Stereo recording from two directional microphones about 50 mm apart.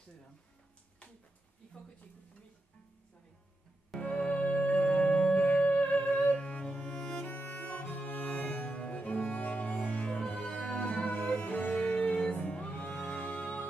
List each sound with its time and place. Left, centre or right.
4.0 s music: left
7.2 s music: left